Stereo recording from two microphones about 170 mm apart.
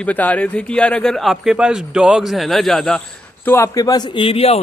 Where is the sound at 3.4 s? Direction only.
15° left (ahead or behind); by 4.6 s 35° left (ahead or behind).